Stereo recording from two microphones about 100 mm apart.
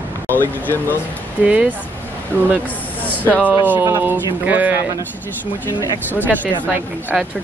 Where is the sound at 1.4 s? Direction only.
15° right (ahead or behind).